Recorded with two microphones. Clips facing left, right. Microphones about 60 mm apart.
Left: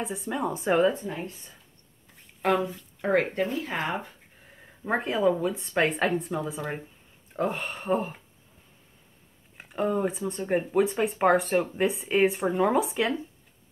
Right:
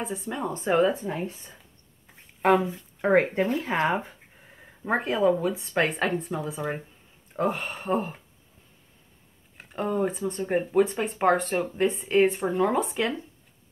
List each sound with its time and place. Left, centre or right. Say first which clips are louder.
0.0 s speech: left 1 dB; centre
1.0 s speech: right 3 dB; centre
2.4 s speech: right 4 dB; centre
9.6 s speech: even; centre